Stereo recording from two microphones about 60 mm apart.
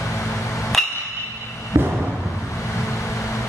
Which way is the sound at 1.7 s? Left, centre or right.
Right.